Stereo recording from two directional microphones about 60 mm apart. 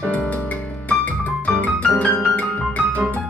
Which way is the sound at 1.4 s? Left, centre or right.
Left.